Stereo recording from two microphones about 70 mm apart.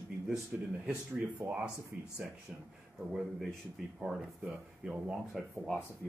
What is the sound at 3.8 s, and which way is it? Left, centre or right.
Speech, centre.